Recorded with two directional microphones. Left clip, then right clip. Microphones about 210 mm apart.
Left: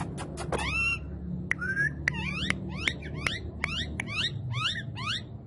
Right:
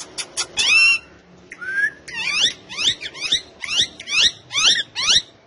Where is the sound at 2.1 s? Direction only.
Centre (ahead or behind).